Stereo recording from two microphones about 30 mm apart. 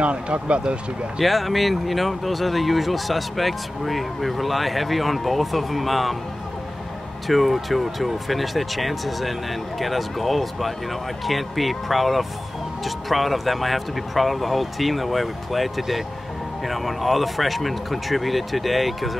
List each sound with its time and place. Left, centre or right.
0.0 s speech: right
1.2 s speech: centre
7.2 s speech: centre